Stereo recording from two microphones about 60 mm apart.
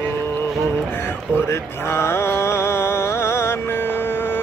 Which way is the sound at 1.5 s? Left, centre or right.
Left.